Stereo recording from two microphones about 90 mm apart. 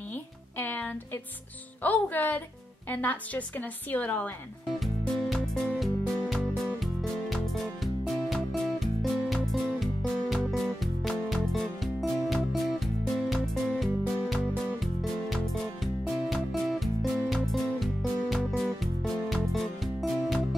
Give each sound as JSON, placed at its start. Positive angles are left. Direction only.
{"t": 0.1, "sound": "music", "side_deg": 20}
{"t": 1.8, "sound": "a woman's voice", "side_deg": 20}
{"t": 4.7, "sound": "music", "side_deg": 0}